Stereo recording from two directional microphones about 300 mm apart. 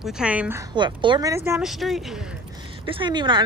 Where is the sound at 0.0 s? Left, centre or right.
Centre.